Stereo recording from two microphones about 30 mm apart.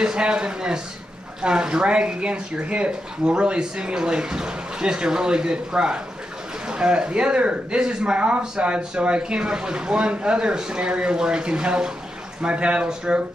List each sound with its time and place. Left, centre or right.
0.0 s speech: right
3.3 s speech: right